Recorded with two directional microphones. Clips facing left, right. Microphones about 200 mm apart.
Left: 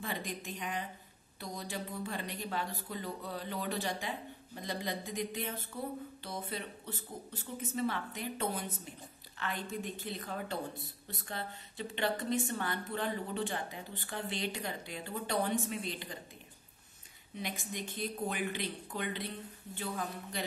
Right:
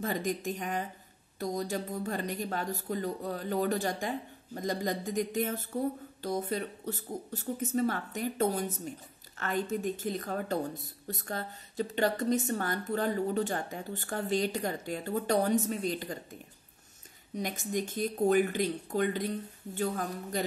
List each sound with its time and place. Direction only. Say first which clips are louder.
0.0 s speech: right 8 dB; 45° right (ahead or behind)
17.3 s speech: right 7 dB; 45° right (ahead or behind)